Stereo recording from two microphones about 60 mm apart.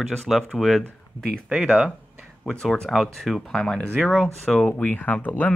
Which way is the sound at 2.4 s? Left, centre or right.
Centre.